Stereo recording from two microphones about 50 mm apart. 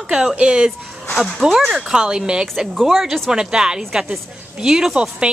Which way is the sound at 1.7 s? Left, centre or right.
Centre.